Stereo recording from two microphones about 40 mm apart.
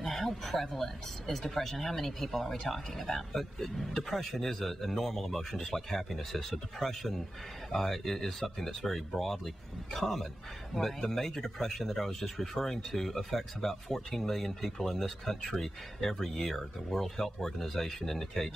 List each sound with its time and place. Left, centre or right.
0.0 s speech: centre